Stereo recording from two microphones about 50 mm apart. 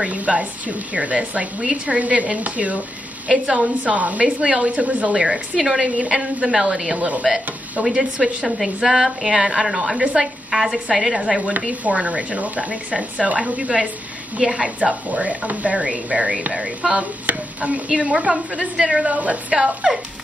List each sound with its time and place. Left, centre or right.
0.0 s a woman's voice: right
3.3 s a woman's voice: centre
3.8 s a woman's voice: right
4.4 s a woman's voice: centre
5.1 s a woman's voice: centre
5.9 s a woman's voice: right
7.0 s a woman's voice: right
7.8 s a woman's voice: centre
11.8 s a woman's voice: right
16.9 s a woman's voice: right
18.8 s a woman's voice: centre
19.0 s a woman's voice: right